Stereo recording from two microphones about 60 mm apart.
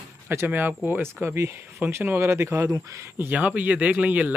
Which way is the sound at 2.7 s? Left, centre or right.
Right.